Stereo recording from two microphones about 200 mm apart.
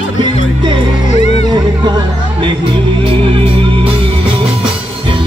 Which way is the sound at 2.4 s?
25° right (ahead or behind).